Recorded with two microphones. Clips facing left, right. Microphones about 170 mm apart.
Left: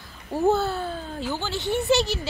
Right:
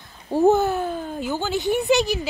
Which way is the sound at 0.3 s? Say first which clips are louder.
Right 5 dB; 15° right (ahead or behind).